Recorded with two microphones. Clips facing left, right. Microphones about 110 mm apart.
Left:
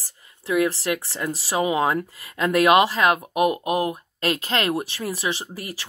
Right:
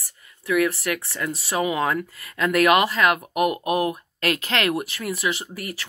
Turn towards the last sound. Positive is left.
turn(degrees=30)  # may be behind; listen again after turning